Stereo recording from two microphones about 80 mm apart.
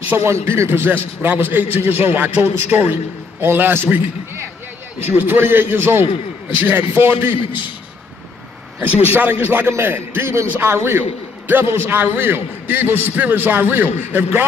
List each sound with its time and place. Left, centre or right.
0.2 s a man's voice: right
9.1 s a man's voice: right